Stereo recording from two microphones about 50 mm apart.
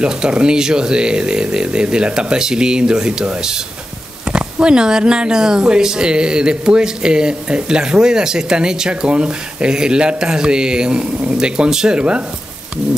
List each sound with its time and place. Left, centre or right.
0.0 s speech: centre